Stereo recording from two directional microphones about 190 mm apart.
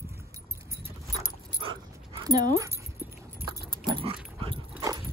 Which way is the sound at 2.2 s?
20° right (ahead or behind).